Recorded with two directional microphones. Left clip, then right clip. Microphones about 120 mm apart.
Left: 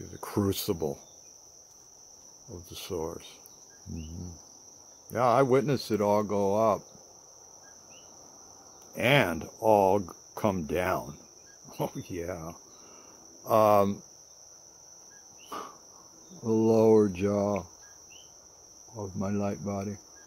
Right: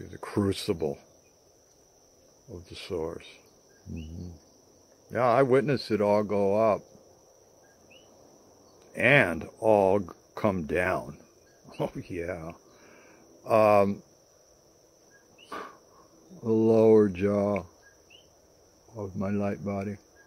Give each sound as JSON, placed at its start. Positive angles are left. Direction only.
{"t": 0.0, "sound": "speech", "side_deg": 20}
{"t": 2.5, "sound": "speech", "side_deg": 25}
{"t": 5.1, "sound": "speech", "side_deg": 20}
{"t": 8.9, "sound": "speech", "side_deg": 20}
{"t": 16.4, "sound": "speech", "side_deg": 20}
{"t": 18.9, "sound": "speech", "side_deg": 15}